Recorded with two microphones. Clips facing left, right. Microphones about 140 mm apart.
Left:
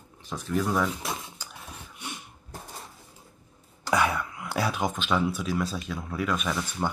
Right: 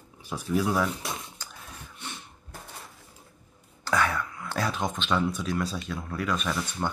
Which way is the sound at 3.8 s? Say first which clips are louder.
Left 1 dB; 15° left (ahead or behind).